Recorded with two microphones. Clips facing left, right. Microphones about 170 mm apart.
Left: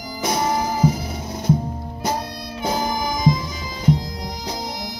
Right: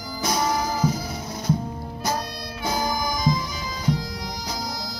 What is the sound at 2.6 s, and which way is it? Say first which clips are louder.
Music: left 3 dB; 25° left (ahead or behind).